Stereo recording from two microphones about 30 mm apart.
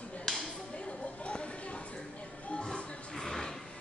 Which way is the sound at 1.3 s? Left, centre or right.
Left.